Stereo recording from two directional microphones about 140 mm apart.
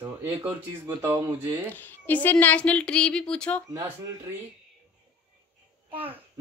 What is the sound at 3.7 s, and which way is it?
Speech, 25° right (ahead or behind).